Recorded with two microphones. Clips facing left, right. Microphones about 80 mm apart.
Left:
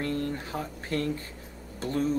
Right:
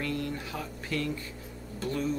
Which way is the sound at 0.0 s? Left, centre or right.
Left.